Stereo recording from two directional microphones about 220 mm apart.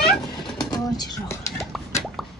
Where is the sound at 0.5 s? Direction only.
15° left (ahead or behind).